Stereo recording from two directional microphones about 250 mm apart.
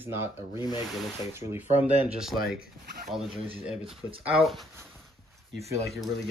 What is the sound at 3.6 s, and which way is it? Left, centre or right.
Speech, centre.